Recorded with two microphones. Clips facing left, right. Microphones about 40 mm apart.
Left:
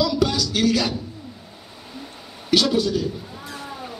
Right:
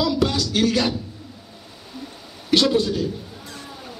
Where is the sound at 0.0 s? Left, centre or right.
Centre.